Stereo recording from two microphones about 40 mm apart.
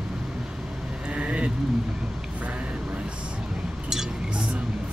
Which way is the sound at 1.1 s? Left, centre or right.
Right.